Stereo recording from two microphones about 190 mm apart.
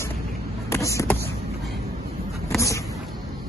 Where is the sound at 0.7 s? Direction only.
15° left (ahead or behind).